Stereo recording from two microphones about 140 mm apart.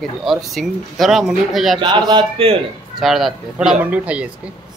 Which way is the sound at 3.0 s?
Centre (ahead or behind).